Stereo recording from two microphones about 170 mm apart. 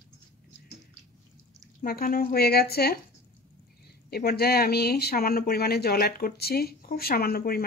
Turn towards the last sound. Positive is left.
turn(degrees=60)  # may be behind; listen again after turning